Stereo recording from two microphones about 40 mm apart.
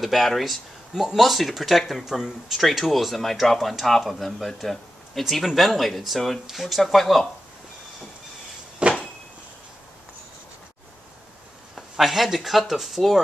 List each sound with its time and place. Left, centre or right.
0.0 s speech: centre
8.8 s cupboard open or close: right
11.7 s speech: centre